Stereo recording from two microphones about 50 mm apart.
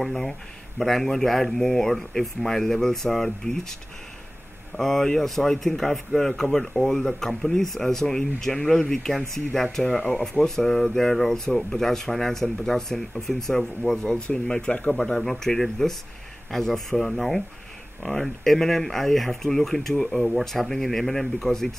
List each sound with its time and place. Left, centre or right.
0.0 s speech: centre
4.7 s speech: centre
14.9 s speech: centre